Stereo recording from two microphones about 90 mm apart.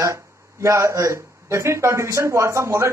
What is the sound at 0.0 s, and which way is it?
Speech, 35° right (ahead or behind).